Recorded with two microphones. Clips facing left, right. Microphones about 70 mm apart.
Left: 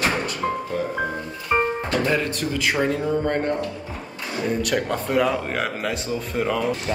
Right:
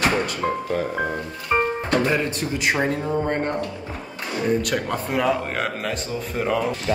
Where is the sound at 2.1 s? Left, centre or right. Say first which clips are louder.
Even; centre.